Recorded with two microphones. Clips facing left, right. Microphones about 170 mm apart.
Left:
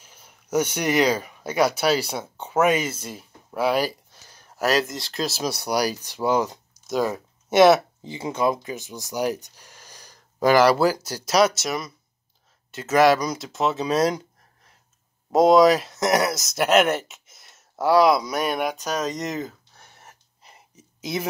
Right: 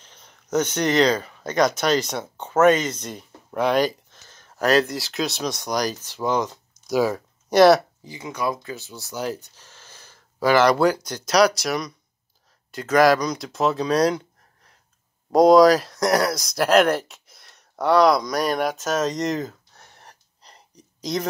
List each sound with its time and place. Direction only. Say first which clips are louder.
0.0 s speech: right 1 dB; 10° left (ahead or behind)
6.9 s speech: right 3 dB; centre (ahead or behind)
8.0 s speech: left 4 dB; 25° left (ahead or behind); by 14.2 s 5° left (ahead or behind)
15.3 s speech: right 2 dB; centre (ahead or behind)